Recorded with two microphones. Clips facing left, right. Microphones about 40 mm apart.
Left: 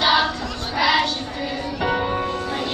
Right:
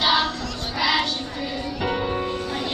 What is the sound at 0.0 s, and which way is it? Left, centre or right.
Child singing, centre.